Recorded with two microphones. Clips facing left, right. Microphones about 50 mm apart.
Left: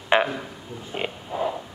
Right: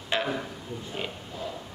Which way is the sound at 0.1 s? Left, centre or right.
Left.